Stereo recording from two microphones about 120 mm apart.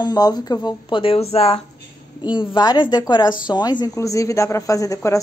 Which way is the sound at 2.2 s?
40° left (ahead or behind).